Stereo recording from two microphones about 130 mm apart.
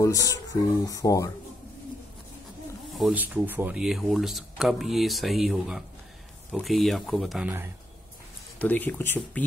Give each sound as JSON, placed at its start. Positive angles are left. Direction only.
{"t": 0.0, "sound": "speech", "side_deg": 25}
{"t": 2.9, "sound": "a sound", "side_deg": 0}
{"t": 3.2, "sound": "speech", "side_deg": -15}
{"t": 7.4, "sound": "speech", "side_deg": -15}
{"t": 8.5, "sound": "speech", "side_deg": 15}